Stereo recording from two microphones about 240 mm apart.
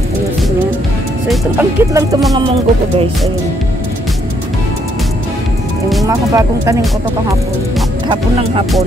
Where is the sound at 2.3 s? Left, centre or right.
Right.